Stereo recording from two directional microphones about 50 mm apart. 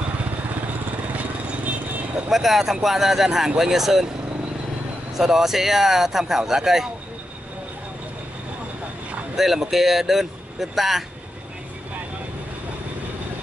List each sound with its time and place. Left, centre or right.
1.1 s vehicle: right
2.2 s speech: centre
5.1 s speech: centre
9.3 s speech: centre